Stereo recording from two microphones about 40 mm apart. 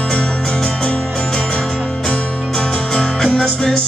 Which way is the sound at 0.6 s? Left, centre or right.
Centre.